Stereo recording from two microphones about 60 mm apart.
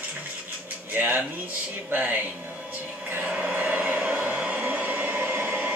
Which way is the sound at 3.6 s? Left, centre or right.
Right.